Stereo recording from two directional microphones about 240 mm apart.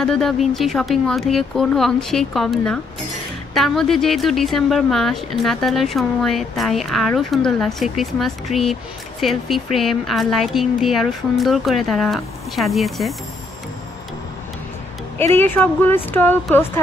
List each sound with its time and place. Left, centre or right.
0.0 s speech: centre
15.3 s speech: centre